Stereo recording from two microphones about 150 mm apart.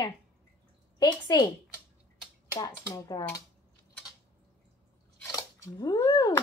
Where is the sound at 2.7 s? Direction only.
20° left (ahead or behind).